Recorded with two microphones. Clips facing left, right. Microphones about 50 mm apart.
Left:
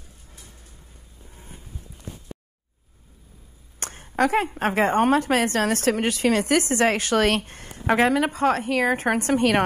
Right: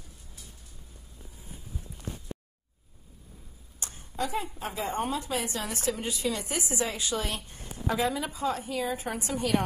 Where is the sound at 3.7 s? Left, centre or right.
Left.